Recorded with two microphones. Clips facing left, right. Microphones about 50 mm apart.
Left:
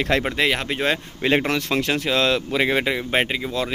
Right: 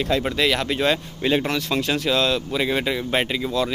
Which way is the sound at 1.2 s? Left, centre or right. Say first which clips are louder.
Left 1 dB; left.